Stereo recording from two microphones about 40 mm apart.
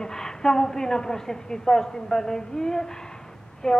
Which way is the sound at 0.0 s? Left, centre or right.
Centre.